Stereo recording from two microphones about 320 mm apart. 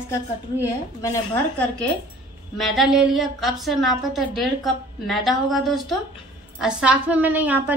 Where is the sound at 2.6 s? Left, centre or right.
Centre.